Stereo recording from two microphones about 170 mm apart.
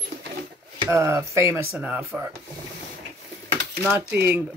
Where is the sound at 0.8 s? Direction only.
15° right (ahead or behind).